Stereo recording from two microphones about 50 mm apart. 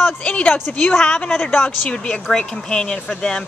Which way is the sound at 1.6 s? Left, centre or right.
Centre.